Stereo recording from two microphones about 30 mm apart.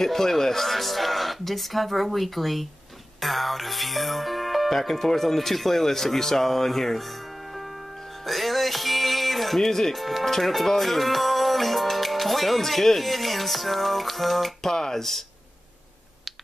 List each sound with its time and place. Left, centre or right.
0.0 s speech: centre
8.3 s music: centre
9.9 s speech: centre
14.7 s speech: centre